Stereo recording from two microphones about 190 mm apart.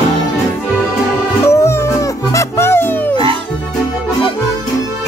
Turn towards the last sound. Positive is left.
turn(degrees=10)  # may be behind; listen again after turning